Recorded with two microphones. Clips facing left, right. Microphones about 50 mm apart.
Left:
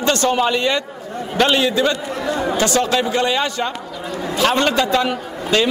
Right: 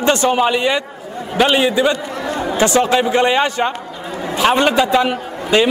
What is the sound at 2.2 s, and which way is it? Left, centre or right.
Chatter, right.